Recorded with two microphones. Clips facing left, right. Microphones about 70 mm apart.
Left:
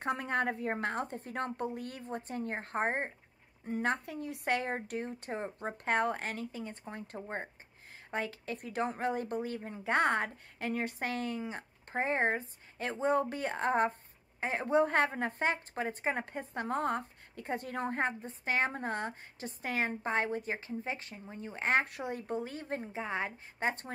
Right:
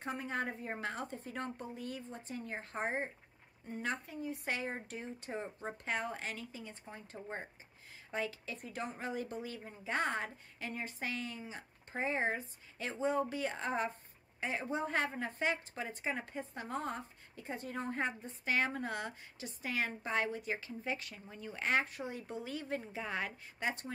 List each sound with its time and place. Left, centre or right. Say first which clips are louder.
0.0 s a woman's voice: left 6 dB; left
4.1 s a woman's voice: left 5 dB; left
21.8 s a woman's voice: left 5 dB; left